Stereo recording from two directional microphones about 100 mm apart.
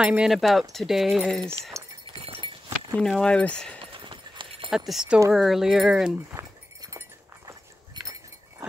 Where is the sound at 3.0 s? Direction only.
5° left (ahead or behind).